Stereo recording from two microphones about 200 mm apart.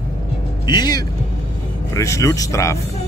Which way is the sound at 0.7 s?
20° left (ahead or behind).